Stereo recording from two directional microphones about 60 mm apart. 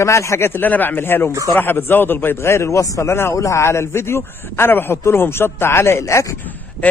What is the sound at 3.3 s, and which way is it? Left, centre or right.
A man's voice, left.